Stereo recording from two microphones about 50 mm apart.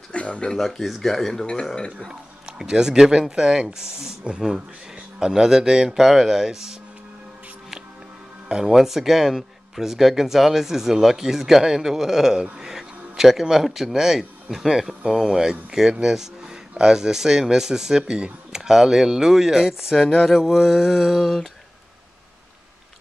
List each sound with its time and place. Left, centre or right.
0.1 s speech: left
0.5 s speech: centre
1.4 s speech: centre
2.0 s speech: centre
8.5 s speech: centre